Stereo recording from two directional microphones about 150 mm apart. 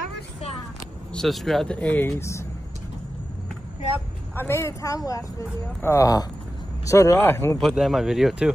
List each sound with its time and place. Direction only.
1.1 s speech: centre (ahead or behind); by 2.4 s 15° left (ahead or behind)
4.4 s speech: 15° left (ahead or behind)
7.6 s speech: centre (ahead or behind)